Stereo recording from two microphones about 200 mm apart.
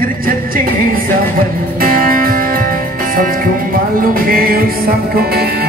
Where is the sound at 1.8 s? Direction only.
45° right (ahead or behind).